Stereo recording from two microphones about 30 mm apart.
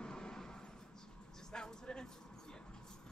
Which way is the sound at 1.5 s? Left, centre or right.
Left.